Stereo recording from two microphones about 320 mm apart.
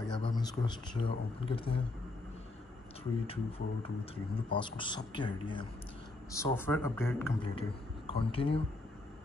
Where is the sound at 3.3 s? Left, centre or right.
Centre.